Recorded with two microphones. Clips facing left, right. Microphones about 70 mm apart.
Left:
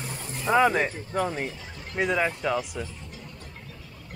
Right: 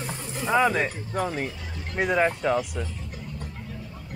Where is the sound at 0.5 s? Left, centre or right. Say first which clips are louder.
Left 1 dB; centre.